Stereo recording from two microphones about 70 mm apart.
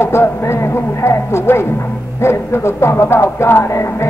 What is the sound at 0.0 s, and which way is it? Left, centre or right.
Music, left.